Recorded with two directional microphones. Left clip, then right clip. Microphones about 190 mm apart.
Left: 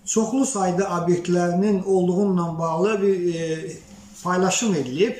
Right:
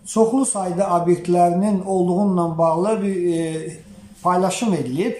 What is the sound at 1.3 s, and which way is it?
Speech, 20° right (ahead or behind).